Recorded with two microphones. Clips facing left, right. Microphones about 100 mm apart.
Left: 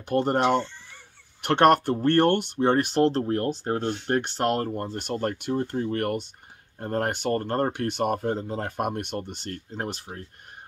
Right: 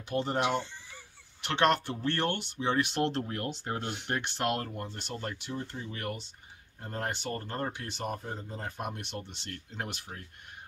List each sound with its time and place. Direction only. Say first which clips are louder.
0.1 s speech: left 7 dB; 55° left (ahead or behind)
4.9 s speech: left 10 dB; 50° left (ahead or behind); by 10.2 s 35° left (ahead or behind)